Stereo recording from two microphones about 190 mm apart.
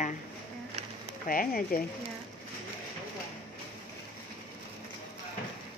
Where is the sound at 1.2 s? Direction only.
45° left (ahead or behind).